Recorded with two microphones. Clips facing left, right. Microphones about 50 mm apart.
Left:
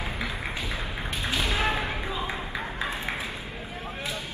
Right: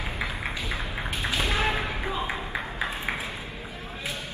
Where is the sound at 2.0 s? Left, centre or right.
Right.